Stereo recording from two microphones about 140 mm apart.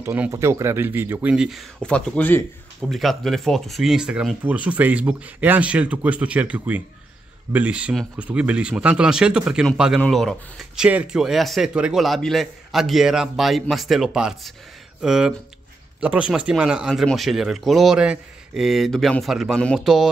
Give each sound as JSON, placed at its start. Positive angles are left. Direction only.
{"t": 0.0, "sound": "speech", "side_deg": -15}
{"t": 1.3, "sound": "speech", "side_deg": -5}
{"t": 2.9, "sound": "speech", "side_deg": 0}